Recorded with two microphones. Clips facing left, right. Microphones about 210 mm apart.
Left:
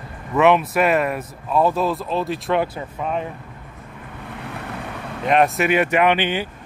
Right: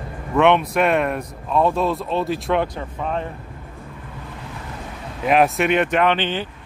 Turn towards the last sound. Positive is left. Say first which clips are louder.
# left 1 dB
turn(degrees=10)  # may be behind; listen again after turning